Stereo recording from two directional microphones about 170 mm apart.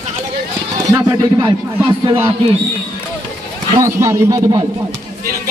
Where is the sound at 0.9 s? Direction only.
25° right (ahead or behind).